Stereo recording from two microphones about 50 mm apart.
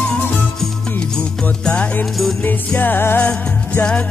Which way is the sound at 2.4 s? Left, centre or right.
Left.